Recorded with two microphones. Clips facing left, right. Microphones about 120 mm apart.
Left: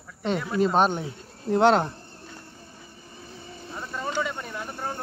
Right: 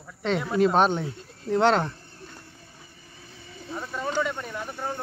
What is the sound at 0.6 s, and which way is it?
Speech, centre (ahead or behind).